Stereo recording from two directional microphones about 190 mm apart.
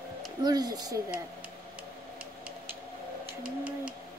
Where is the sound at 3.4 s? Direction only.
5° right (ahead or behind).